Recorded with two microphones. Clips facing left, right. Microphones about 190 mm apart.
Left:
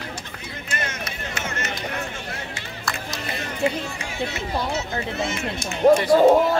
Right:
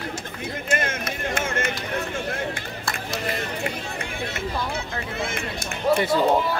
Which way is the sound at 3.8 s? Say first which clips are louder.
Left 2 dB; 55° right (ahead or behind).